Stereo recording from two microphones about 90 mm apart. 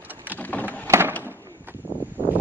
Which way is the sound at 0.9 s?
25° right (ahead or behind).